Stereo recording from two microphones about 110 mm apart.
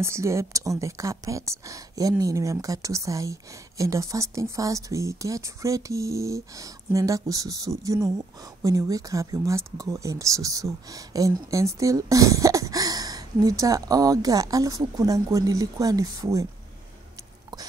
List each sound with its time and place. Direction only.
0.0 s speech: 25° right (ahead or behind)